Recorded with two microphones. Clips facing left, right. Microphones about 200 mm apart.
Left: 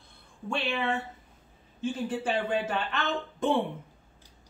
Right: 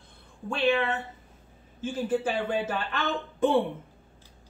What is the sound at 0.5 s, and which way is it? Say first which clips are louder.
Speech: right 4 dB; centre (ahead or behind).